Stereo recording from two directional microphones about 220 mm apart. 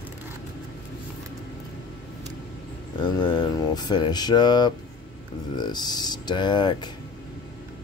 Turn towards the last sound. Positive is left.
turn(degrees=20)  # may be behind; listen again after turning